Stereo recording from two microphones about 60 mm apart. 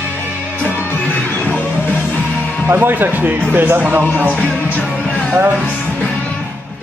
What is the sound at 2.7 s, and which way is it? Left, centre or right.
A man's voice, right.